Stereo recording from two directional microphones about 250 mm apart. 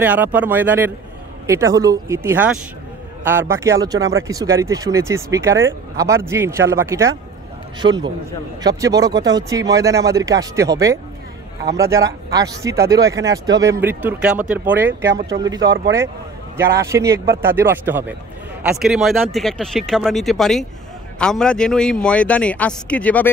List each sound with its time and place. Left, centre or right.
0.0 s a man's voice: centre